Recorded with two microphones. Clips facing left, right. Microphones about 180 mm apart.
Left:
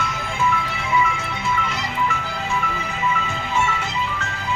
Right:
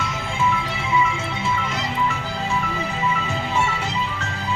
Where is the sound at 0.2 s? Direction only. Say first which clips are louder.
Even; 25° right (ahead or behind).